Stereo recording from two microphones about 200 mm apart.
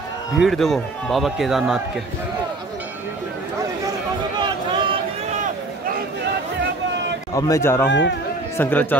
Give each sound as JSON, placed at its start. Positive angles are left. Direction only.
{"t": 0.4, "sound": "a man's voice", "side_deg": 0}
{"t": 4.4, "sound": "a sound", "side_deg": -25}
{"t": 7.3, "sound": "a man's voice", "side_deg": 15}
{"t": 7.9, "sound": "speech", "side_deg": 65}
{"t": 8.5, "sound": "a man's voice", "side_deg": 10}